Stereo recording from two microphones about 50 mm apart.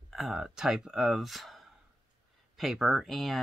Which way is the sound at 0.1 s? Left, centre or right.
Centre.